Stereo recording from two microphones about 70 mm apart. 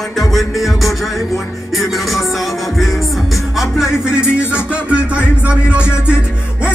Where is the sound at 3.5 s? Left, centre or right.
Centre.